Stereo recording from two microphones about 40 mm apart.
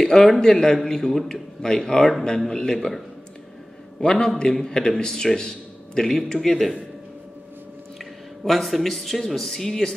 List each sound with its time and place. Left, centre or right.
0.0 s a man's voice: centre
4.0 s a man's voice: left
8.0 s speech: centre